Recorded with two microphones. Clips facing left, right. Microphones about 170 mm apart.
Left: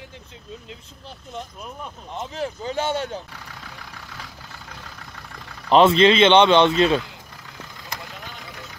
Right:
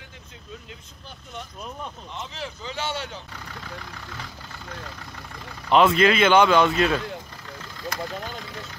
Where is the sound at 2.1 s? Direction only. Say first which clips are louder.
Left 6 dB; 40° left (ahead or behind).